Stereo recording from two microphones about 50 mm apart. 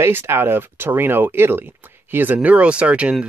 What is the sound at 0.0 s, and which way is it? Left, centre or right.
Speech, right.